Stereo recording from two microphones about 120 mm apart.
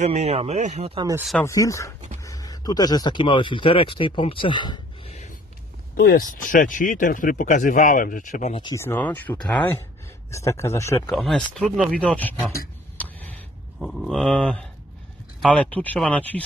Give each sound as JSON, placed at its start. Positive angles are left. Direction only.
{"t": 0.0, "sound": "speech", "side_deg": -65}
{"t": 1.4, "sound": "a man's voice", "side_deg": 25}
{"t": 5.0, "sound": "music", "side_deg": 75}
{"t": 6.2, "sound": "speech", "side_deg": 90}
{"t": 8.7, "sound": "a man's voice", "side_deg": 20}
{"t": 11.1, "sound": "speech", "side_deg": 0}
{"t": 12.9, "sound": "tick", "side_deg": 15}
{"t": 13.7, "sound": "speech", "side_deg": 0}